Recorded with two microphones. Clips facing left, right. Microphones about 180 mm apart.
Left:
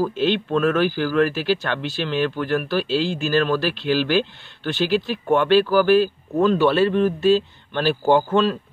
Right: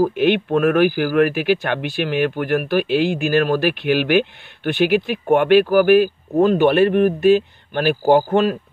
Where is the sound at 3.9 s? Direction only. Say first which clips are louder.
Right 3 dB; 15° right (ahead or behind).